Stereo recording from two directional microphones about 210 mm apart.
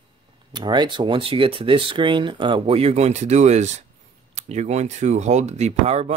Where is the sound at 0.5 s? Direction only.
20° right (ahead or behind).